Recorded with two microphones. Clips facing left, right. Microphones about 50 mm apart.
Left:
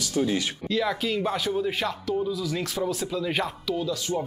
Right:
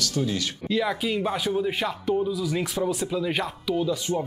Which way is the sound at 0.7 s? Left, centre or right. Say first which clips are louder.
Right 1 dB; centre.